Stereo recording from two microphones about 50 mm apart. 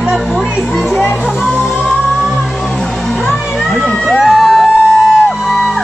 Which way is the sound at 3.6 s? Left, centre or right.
Centre.